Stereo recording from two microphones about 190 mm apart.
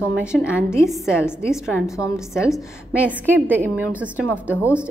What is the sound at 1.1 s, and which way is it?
Speech, 10° left (ahead or behind).